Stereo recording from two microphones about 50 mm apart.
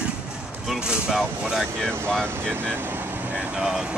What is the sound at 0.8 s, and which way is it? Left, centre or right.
Speech, centre.